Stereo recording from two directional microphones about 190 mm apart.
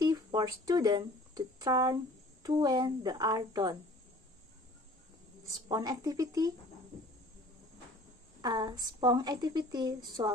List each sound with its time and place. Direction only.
0.0 s a woman's voice: 20° right (ahead or behind)
5.7 s a woman's voice: 20° right (ahead or behind)
8.4 s a woman's voice: 20° right (ahead or behind)